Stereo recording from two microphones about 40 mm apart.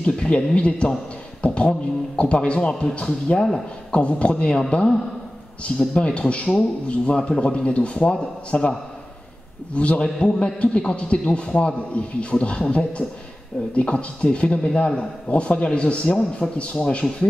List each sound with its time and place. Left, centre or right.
0.0 s a man's voice: left
9.8 s a man's voice: left
10.0 s a man's voice: centre